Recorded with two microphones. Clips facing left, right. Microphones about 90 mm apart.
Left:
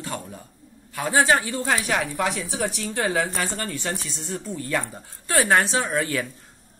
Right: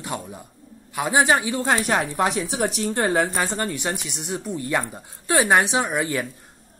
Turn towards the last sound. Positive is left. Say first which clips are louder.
# right 1 dB
turn(degrees=-15)  # may be behind; listen again after turning